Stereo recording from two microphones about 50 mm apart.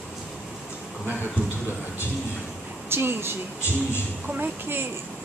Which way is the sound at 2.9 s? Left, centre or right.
Right.